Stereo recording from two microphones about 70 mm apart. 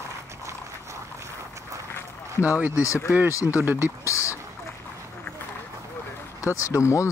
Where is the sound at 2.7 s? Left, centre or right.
Left.